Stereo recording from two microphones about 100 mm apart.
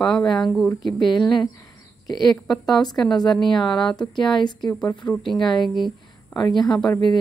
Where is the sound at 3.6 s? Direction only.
50° left (ahead or behind).